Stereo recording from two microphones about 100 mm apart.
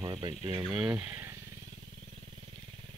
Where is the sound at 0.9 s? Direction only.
20° right (ahead or behind).